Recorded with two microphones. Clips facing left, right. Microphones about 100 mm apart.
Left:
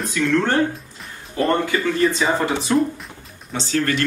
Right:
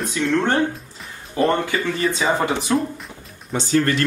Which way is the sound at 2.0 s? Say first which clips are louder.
Left 4 dB; centre (ahead or behind).